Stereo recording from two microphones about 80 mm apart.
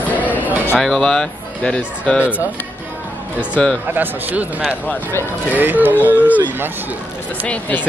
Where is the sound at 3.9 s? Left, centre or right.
Right.